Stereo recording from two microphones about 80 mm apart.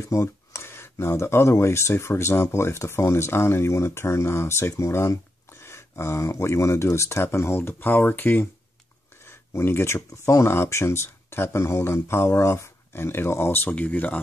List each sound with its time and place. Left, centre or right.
0.0 s speech: left
9.5 s speech: left